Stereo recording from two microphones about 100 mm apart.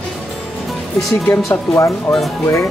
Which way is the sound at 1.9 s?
Centre (ahead or behind).